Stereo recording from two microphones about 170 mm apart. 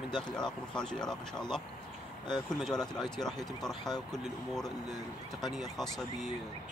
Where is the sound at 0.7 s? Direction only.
5° left (ahead or behind).